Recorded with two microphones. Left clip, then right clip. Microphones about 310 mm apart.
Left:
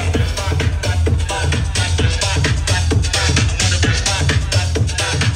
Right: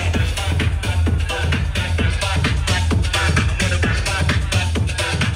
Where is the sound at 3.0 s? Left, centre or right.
Centre.